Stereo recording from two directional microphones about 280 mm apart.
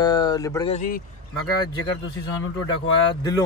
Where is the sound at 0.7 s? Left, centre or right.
Left.